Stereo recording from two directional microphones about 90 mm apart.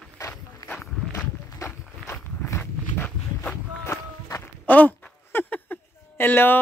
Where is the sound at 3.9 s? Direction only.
35° left (ahead or behind).